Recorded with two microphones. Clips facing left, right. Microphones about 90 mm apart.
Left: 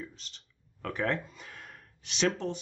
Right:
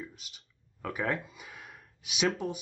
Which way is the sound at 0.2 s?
10° right (ahead or behind).